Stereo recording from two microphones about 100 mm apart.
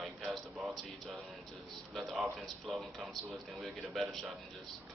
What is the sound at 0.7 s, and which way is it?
Music, centre (ahead or behind).